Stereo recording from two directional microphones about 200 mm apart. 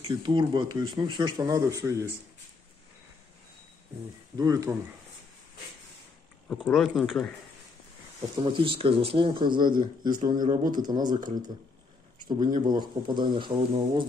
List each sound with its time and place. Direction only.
0.0 s speech: 25° right (ahead or behind)
4.4 s speech: 20° right (ahead or behind)
6.5 s speech: centre (ahead or behind)
8.4 s speech: 25° right (ahead or behind)